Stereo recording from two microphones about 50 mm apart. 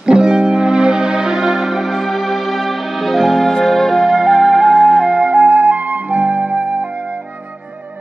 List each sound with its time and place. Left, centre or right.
0.0 s music: centre
4.2 s music: centre
5.3 s flute: right